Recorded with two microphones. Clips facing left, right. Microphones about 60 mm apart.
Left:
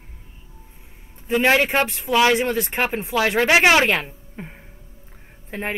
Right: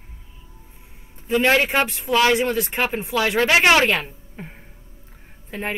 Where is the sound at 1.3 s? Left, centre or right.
Centre.